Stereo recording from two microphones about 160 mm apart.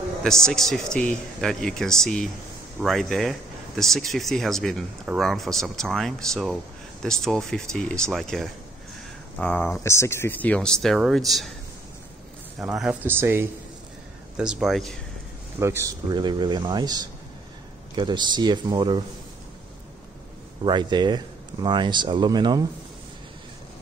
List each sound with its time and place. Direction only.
0.2 s speech: 5° left (ahead or behind)
9.8 s speech: 15° left (ahead or behind); by 11.5 s centre (ahead or behind)
12.5 s speech: 5° right (ahead or behind)
15.6 s speech: 20° right (ahead or behind)
20.6 s speech: 30° right (ahead or behind)